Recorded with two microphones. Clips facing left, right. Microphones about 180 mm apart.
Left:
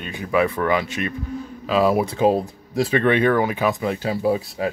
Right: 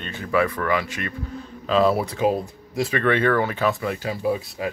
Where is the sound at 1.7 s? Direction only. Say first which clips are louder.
Left 1 dB; 10° left (ahead or behind).